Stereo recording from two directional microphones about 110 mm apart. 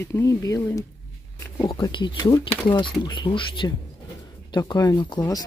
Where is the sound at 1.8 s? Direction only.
45° left (ahead or behind).